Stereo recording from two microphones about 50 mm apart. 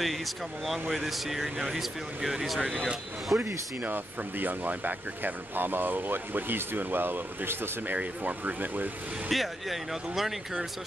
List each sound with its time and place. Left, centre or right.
0.0 s speech: centre
3.3 s speech: right
3.8 s speech: right
7.8 s speech: right
9.3 s speech: centre